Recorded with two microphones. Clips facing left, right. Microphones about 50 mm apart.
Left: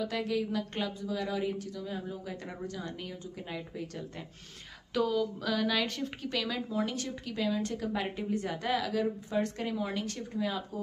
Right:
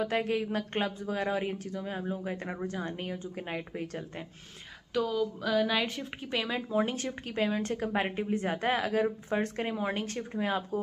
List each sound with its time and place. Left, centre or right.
0.0 s speech: right
4.9 s speech: centre
6.3 s speech: right